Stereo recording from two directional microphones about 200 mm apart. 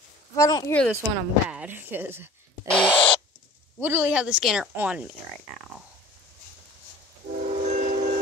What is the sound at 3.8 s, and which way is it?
Speech, 10° right (ahead or behind).